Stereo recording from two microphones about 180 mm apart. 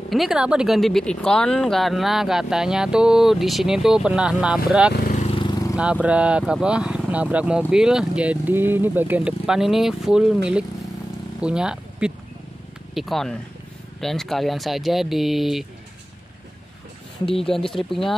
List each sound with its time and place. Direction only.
0.1 s speech: centre (ahead or behind)
5.0 s vehicle: 40° left (ahead or behind); by 5.8 s 20° left (ahead or behind)
6.0 s speech: 5° right (ahead or behind)
17.3 s speech: 30° left (ahead or behind)
17.6 s speech: centre (ahead or behind)